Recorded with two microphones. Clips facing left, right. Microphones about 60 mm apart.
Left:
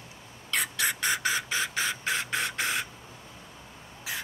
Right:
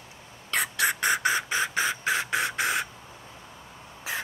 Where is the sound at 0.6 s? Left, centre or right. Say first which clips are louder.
Right 4 dB; centre.